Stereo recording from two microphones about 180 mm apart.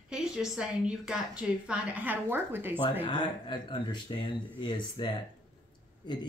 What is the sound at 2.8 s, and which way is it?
Speech, 25° left (ahead or behind).